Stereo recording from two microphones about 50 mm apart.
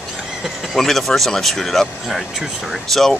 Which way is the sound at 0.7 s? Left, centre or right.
Centre.